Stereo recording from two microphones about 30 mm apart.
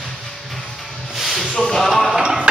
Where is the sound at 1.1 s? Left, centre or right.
Centre.